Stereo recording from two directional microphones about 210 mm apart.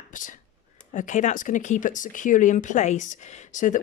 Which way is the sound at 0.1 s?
40° left (ahead or behind).